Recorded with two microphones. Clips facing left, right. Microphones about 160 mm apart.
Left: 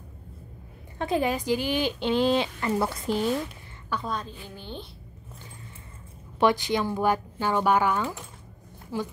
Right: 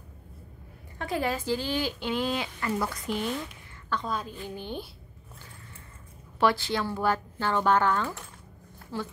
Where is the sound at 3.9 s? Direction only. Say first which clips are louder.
Even; 5° left (ahead or behind).